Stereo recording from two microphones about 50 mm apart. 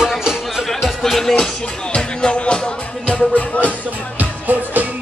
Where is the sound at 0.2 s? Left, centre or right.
Centre.